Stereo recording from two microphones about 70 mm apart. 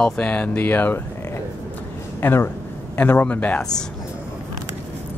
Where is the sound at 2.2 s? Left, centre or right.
Left.